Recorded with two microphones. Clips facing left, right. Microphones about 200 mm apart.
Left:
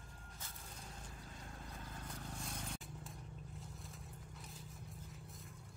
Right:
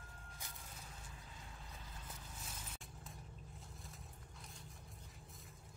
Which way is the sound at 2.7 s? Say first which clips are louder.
Left 5 dB; centre (ahead or behind).